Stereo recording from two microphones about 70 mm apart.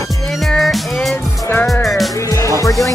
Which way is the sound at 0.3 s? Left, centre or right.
Centre.